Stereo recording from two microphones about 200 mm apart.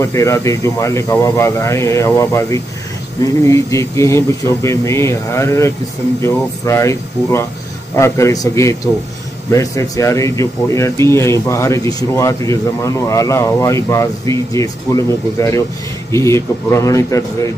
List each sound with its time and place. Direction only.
0.0 s speech: 15° left (ahead or behind)